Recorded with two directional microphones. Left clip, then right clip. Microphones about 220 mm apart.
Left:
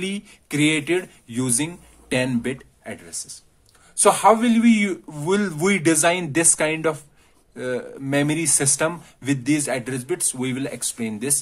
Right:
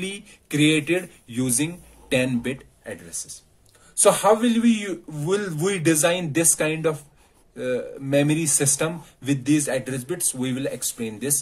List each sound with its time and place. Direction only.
0.0 s speech: 40° left (ahead or behind)